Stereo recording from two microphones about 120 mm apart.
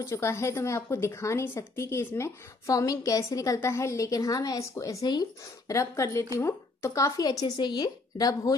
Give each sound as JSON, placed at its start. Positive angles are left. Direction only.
{"t": 0.0, "sound": "speech", "side_deg": 25}